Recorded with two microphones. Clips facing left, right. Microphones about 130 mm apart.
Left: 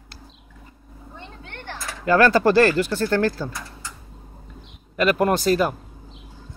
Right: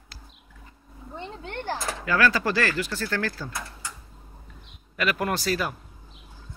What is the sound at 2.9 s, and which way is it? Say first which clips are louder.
Speech: left 8 dB; 25° left (ahead or behind).